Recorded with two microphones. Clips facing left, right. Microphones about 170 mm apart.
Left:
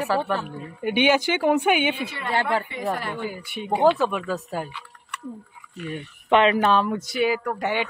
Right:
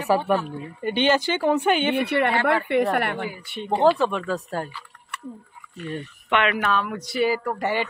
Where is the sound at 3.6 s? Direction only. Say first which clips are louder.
Even; 5° left (ahead or behind).